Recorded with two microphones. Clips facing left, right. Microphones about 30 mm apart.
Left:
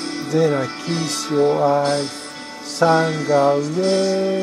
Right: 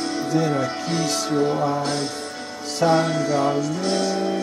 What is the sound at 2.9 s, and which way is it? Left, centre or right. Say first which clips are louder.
Music: left 2 dB; centre.